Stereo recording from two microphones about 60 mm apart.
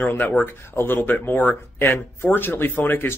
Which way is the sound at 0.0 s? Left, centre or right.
Left.